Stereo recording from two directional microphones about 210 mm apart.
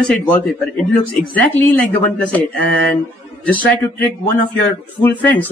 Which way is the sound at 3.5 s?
5° left (ahead or behind).